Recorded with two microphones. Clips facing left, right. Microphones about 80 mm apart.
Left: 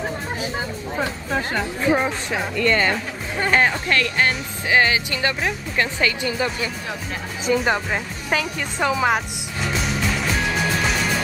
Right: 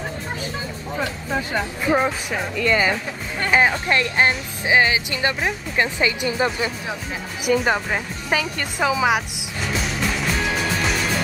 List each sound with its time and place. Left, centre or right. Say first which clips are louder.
1.5 s speech: even; centre
2.5 s speech: even; centre
3.9 s speech: right 1 dB; right
7.5 s speech: even; centre
10.3 s music: left 1 dB; centre